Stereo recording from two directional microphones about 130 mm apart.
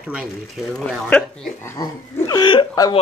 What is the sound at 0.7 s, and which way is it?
Speech, 5° left (ahead or behind).